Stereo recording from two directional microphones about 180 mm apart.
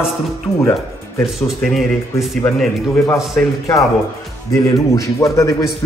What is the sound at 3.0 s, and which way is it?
A man's voice, 15° left (ahead or behind).